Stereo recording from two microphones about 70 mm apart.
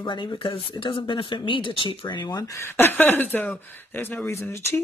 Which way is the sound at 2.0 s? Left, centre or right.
Left.